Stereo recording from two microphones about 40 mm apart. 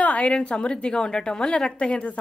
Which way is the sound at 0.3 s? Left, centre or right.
Left.